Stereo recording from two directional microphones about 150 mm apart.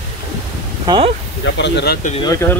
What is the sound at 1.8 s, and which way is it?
Speech, 90° left.